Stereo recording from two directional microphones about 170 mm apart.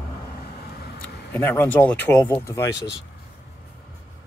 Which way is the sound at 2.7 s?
90° left.